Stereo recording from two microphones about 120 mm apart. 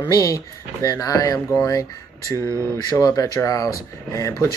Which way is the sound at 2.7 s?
30° left (ahead or behind).